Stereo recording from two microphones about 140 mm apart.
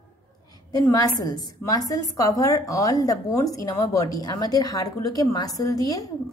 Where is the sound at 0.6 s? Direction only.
25° left (ahead or behind).